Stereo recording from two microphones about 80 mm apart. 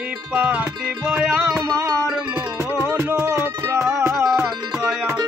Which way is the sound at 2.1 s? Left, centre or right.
Centre.